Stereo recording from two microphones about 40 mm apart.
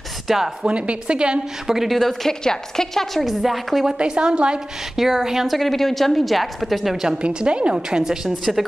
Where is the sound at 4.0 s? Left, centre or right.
Right.